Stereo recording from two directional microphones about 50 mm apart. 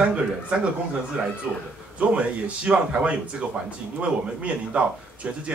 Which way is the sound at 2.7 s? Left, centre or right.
Centre.